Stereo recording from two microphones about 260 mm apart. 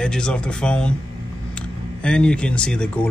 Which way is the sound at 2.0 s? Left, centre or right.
Centre.